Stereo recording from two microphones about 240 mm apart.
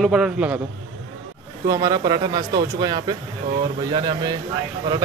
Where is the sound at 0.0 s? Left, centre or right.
Centre.